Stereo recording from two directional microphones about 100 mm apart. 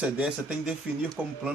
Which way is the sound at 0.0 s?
10° right (ahead or behind).